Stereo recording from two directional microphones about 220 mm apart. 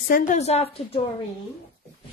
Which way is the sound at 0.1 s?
35° left (ahead or behind).